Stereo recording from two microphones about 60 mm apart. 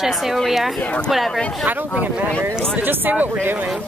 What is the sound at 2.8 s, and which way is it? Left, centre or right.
Speech, right.